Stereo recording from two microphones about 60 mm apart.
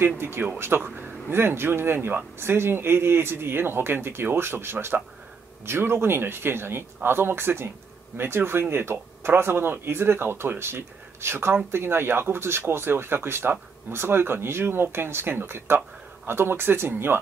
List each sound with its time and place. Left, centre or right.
0.0 s speech: right